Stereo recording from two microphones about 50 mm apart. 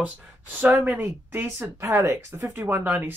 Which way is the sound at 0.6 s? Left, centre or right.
Right.